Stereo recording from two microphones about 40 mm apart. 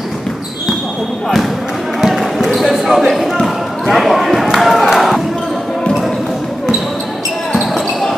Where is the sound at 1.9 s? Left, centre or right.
Centre.